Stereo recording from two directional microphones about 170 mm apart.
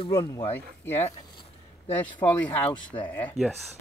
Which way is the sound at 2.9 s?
30° left (ahead or behind).